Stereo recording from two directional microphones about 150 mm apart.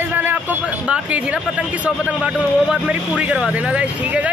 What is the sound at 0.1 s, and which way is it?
Speech, 10° right (ahead or behind).